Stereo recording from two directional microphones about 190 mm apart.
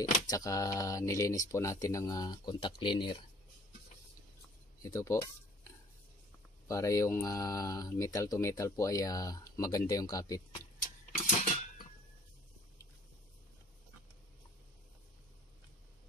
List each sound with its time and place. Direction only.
0.3 s speech: 15° left (ahead or behind)
4.8 s speech: 15° left (ahead or behind)
6.7 s speech: 15° left (ahead or behind)
11.1 s cutlery: 45° left (ahead or behind)